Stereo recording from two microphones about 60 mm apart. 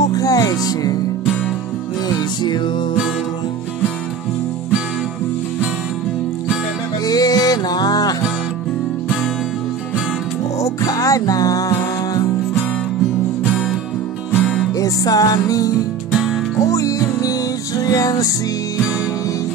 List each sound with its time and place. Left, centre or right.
0.0 s music: left
7.1 s music: left
10.6 s music: left
14.7 s music: left
16.1 s music: centre
16.5 s music: left